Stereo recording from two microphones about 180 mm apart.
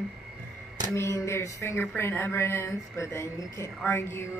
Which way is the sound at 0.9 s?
15° left (ahead or behind).